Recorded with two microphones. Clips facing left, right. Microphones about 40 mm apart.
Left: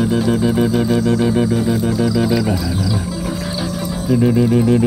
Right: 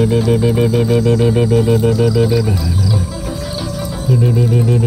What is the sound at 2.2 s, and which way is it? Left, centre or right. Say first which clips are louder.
Music: right 2 dB; centre.